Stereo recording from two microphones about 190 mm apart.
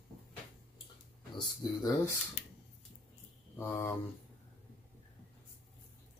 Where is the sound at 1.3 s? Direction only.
20° left (ahead or behind).